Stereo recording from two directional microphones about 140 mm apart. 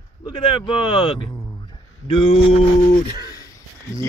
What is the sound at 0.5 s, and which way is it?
Speech, 40° left (ahead or behind).